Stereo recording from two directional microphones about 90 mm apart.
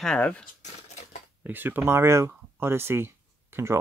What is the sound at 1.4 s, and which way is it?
Speech, 20° right (ahead or behind).